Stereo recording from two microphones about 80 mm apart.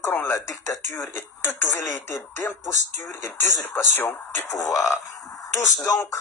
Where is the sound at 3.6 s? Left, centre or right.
Left.